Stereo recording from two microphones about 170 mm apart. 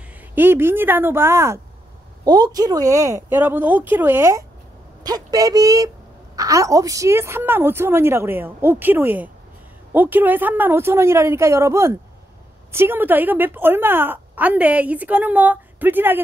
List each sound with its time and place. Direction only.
0.2 s a woman's voice: 10° right (ahead or behind)